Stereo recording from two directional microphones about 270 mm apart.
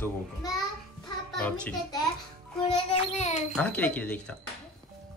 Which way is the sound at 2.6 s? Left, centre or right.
Left.